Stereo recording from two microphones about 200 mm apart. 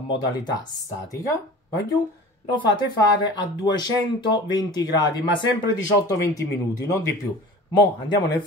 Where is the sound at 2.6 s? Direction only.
20° left (ahead or behind).